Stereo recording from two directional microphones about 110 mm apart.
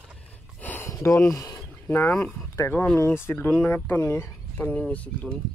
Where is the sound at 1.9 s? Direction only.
15° left (ahead or behind).